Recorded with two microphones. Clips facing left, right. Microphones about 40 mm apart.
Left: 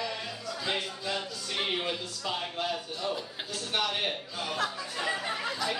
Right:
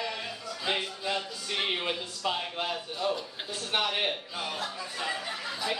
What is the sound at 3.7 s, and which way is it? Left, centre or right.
Speech, centre.